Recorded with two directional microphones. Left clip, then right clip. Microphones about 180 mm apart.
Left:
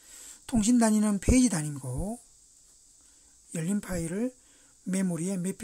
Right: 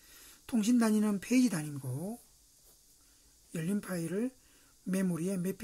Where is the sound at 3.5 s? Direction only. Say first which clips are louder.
Left 4 dB; 30° left (ahead or behind).